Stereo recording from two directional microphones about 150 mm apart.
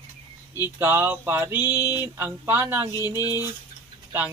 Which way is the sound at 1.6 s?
25° left (ahead or behind).